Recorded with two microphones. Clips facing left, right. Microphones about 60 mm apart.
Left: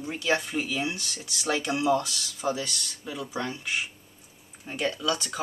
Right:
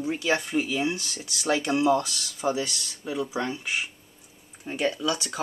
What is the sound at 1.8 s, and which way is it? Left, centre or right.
Speech, right.